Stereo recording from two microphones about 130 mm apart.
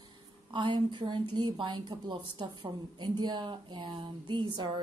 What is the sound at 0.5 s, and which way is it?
A woman's voice, 40° right (ahead or behind).